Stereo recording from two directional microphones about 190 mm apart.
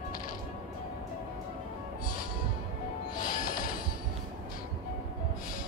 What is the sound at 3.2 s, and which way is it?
Music, 45° left (ahead or behind).